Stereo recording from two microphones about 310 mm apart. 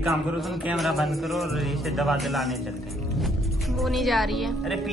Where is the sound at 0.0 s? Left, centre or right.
Centre.